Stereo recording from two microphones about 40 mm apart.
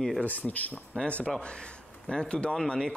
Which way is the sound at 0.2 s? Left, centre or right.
Left.